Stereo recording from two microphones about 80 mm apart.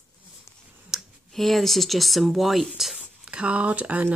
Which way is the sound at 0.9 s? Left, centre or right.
Centre.